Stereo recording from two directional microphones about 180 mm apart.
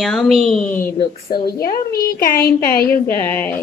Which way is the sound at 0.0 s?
Centre (ahead or behind).